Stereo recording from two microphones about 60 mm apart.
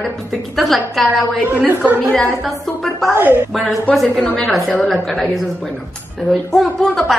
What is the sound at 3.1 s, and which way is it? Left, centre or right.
Speech, right.